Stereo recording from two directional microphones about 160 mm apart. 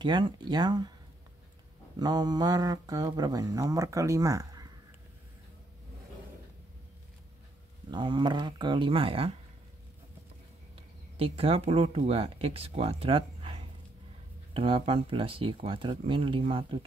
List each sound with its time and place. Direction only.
0.0 s speech: 30° right (ahead or behind)
2.0 s speech: 25° right (ahead or behind)
7.9 s speech: 30° right (ahead or behind)
11.1 s speech: 35° right (ahead or behind)